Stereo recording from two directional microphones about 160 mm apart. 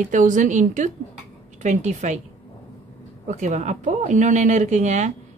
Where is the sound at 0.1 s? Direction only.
55° right (ahead or behind).